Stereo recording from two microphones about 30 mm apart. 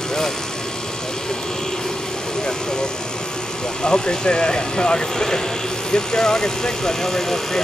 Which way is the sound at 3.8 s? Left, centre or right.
Left.